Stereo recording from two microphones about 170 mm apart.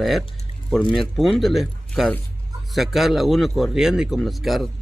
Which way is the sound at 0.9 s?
Centre (ahead or behind).